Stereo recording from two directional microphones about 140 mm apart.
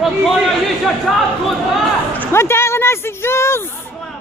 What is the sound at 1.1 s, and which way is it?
Speech, centre (ahead or behind).